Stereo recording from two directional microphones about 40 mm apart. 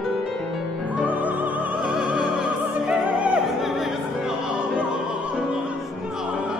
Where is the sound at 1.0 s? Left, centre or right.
Right.